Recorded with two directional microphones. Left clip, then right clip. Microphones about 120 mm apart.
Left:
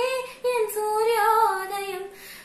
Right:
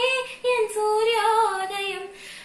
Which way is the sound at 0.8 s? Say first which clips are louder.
Right 3 dB; centre (ahead or behind).